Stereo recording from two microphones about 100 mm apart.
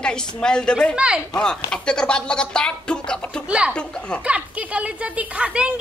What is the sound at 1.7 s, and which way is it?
A man's voice, 10° left (ahead or behind).